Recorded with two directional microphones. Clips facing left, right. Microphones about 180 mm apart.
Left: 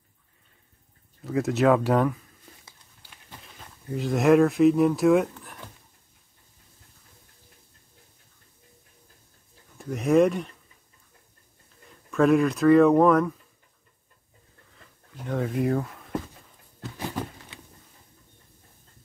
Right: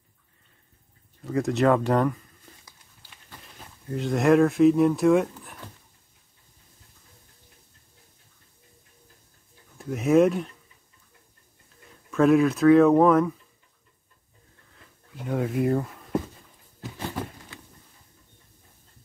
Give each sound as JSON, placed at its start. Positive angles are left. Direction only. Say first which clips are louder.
{"t": 1.2, "sound": "speech", "louder": "even", "side_deg": 0}
{"t": 3.4, "sound": "speech", "louder": "even", "side_deg": 0}
{"t": 9.8, "sound": "speech", "louder": "right 1 dB", "side_deg": 0}
{"t": 12.1, "sound": "speech", "louder": "right 1 dB", "side_deg": 0}
{"t": 15.2, "sound": "speech", "louder": "right 1 dB", "side_deg": -5}